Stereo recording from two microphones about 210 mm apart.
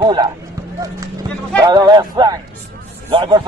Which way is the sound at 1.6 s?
20° right (ahead or behind).